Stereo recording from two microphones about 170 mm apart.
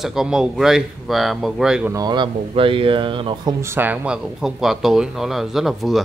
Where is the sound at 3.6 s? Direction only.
10° right (ahead or behind).